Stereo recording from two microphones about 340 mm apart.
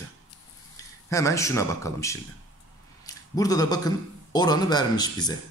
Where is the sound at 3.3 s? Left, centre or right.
Centre.